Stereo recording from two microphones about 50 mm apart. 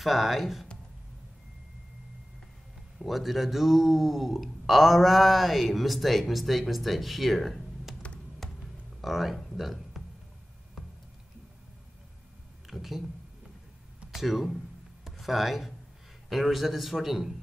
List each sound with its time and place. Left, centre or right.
0.0 s speech: centre
3.0 s speech: centre
8.4 s music: centre
9.0 s speech: centre
12.6 s speech: centre
14.1 s speech: centre